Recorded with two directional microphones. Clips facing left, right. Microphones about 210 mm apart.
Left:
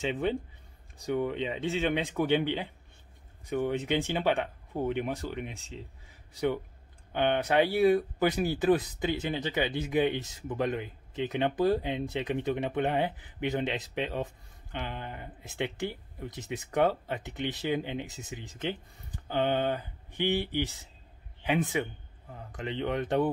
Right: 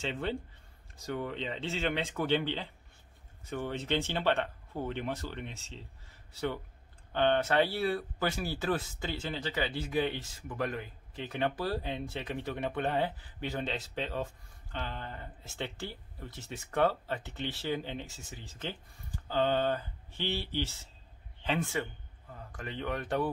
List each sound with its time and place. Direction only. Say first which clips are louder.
0.0 s a man's voice: left 5 dB; 15° left (ahead or behind)